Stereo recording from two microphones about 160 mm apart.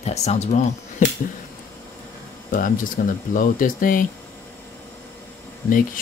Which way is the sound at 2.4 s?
55° left (ahead or behind).